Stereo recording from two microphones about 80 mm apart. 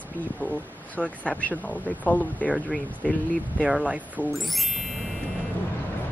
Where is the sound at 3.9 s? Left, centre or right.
Centre.